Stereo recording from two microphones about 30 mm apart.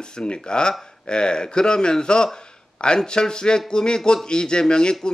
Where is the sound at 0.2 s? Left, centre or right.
Left.